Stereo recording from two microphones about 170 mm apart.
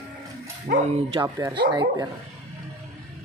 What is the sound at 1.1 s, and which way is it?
Speech, 25° right (ahead or behind).